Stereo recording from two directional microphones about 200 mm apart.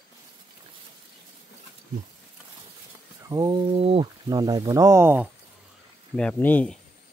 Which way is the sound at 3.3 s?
20° right (ahead or behind).